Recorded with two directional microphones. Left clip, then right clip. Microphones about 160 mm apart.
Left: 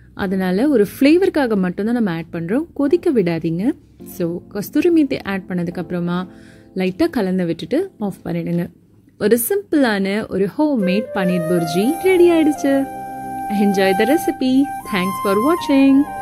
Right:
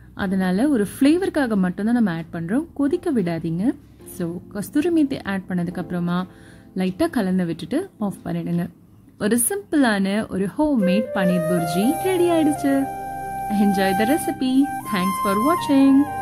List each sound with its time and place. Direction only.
0.2 s a woman's voice: 30° left (ahead or behind)
12.8 s music: centre (ahead or behind)
13.5 s a woman's voice: 30° left (ahead or behind)
15.0 s speech: centre (ahead or behind)
15.6 s a woman's voice: 30° left (ahead or behind)
15.9 s speech: centre (ahead or behind)